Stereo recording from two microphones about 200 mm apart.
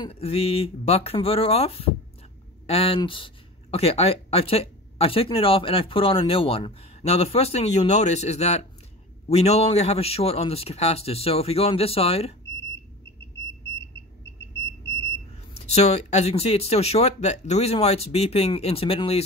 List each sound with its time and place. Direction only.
0.0 s speech: 30° left (ahead or behind)
15.5 s speech: 30° left (ahead or behind)